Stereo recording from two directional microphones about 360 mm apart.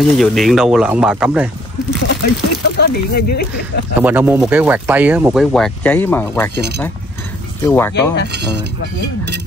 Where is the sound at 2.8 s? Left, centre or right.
Left.